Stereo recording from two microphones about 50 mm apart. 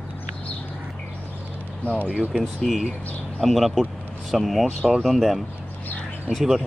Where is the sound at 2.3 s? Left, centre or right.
Centre.